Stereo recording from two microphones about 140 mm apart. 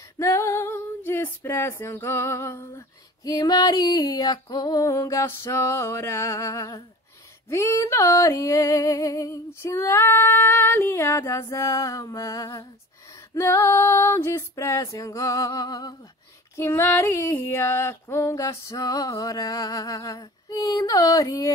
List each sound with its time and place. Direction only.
0.2 s female singing: 20° left (ahead or behind)
16.5 s female singing: 15° left (ahead or behind)